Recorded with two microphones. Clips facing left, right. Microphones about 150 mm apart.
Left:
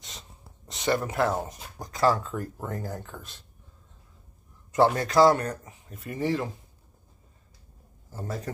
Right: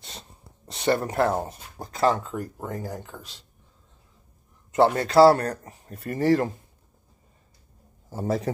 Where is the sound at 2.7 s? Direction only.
10° right (ahead or behind).